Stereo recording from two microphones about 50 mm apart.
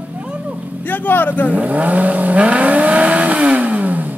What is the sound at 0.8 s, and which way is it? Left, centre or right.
Speech, left.